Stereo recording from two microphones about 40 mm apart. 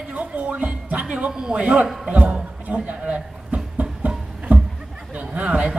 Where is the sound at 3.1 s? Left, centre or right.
Right.